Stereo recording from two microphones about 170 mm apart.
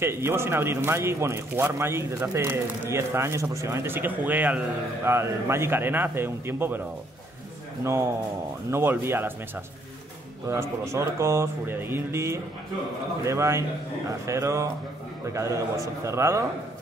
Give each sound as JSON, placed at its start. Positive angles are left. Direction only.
{"t": 0.0, "sound": "speech", "side_deg": -15}
{"t": 7.8, "sound": "speech", "side_deg": -15}
{"t": 10.5, "sound": "speech", "side_deg": -15}